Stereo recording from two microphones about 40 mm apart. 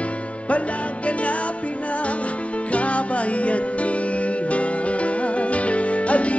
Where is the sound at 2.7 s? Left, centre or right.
Left.